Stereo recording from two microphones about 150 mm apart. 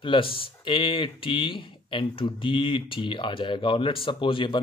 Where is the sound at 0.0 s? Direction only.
35° left (ahead or behind).